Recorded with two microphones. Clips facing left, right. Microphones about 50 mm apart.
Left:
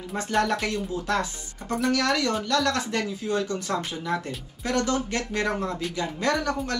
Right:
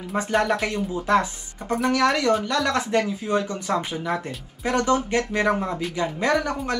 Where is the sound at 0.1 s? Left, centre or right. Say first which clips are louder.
Right 3 dB; centre.